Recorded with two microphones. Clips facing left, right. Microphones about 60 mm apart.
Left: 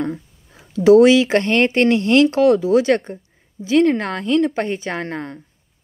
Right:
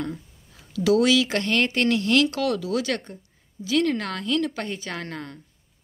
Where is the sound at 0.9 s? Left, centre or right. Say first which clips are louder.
Left 9 dB; left.